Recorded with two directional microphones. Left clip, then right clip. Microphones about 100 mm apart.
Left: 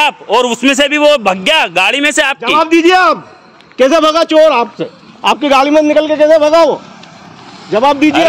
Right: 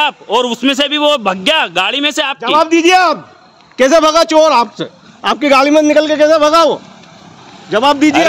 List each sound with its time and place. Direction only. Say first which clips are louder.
0.0 s a man's voice: left 3 dB; 20° right (ahead or behind)
1.0 s a man's voice: left 2 dB; 30° right (ahead or behind)
1.7 s speech: left 3 dB; 15° right (ahead or behind)
2.0 s a man's voice: left 4 dB; centre (ahead or behind)
2.6 s a man's voice: left 1 dB; 35° right (ahead or behind)
3.7 s a man's voice: even; 55° right (ahead or behind)
4.4 s a man's voice: left 1 dB; 75° right (ahead or behind)
6.1 s a man's voice: left 3 dB; 45° right (ahead or behind)